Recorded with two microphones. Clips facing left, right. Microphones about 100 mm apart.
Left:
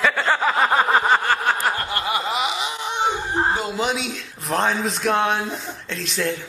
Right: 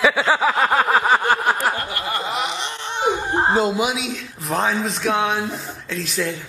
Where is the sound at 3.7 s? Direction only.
5° right (ahead or behind).